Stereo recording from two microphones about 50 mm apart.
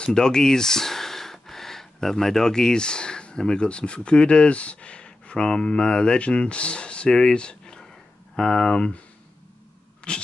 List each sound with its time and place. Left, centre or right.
0.0 s speech: centre
10.1 s speech: left